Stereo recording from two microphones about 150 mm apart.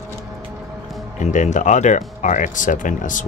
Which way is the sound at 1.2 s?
55° left (ahead or behind).